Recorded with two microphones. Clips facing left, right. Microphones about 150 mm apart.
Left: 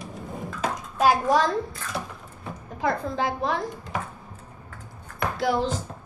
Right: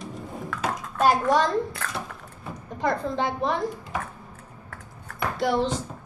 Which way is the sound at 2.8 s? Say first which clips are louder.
Even; 5° left (ahead or behind).